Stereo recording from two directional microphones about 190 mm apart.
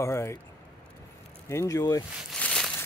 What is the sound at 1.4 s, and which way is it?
Speech, 15° left (ahead or behind).